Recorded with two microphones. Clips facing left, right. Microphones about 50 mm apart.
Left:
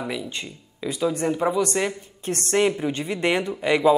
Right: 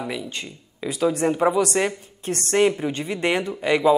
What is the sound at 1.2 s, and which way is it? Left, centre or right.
Speech, centre.